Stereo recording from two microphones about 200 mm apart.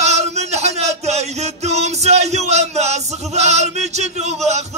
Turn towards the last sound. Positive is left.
turn(degrees=-35)  # may be behind; listen again after turning